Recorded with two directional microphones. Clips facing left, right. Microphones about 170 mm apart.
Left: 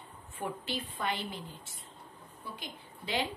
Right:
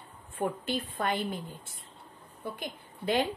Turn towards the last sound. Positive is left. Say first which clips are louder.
# right 7 dB
turn(degrees=-50)  # may be behind; listen again after turning